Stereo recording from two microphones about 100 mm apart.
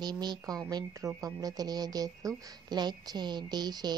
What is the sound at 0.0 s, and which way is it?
Speech, 45° right (ahead or behind).